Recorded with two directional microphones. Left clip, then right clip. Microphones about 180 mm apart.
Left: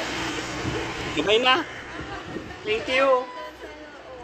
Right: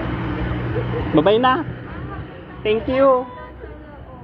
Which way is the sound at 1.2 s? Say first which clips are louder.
Right 3 dB; 15° right (ahead or behind).